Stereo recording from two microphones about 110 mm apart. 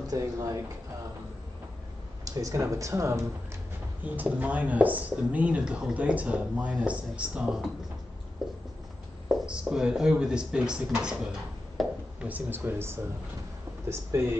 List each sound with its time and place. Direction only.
0.0 s speech: 35° right (ahead or behind)
2.2 s speech: 30° right (ahead or behind)
4.0 s speech: 15° right (ahead or behind)
8.4 s writing: 5° right (ahead or behind)
9.3 s speech: 5° right (ahead or behind)
11.8 s a sound: centre (ahead or behind)
12.2 s speech: 15° right (ahead or behind)
14.1 s speech: 25° right (ahead or behind)